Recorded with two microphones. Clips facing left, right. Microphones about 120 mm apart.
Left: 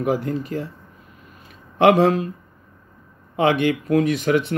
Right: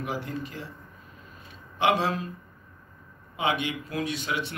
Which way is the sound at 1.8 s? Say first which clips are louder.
Left 10 dB; 65° left (ahead or behind).